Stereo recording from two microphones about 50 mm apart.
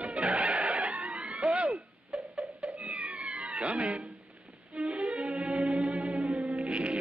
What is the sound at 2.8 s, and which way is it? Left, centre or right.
Cat, right.